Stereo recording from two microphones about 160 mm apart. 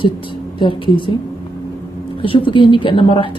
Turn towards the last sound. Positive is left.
turn(degrees=30)  # may be behind; listen again after turning